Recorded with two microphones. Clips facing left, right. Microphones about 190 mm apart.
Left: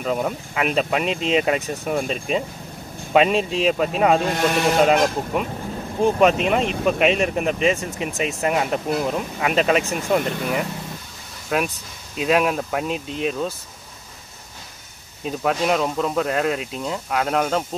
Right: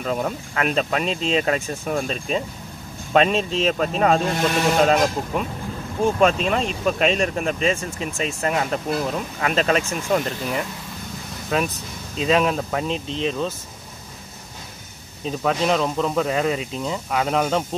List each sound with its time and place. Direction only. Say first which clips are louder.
0.0 s speech: left 1 dB; 5° left (ahead or behind)
6.0 s speech: left 2 dB; 15° left (ahead or behind)
15.2 s speech: even; 5° left (ahead or behind)